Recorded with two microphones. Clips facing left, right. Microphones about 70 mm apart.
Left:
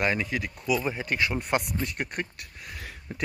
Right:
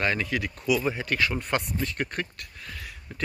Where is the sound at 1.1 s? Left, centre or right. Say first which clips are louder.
Left 2 dB; centre.